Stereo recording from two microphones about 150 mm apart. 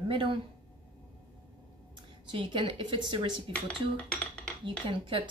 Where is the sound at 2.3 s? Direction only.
35° right (ahead or behind).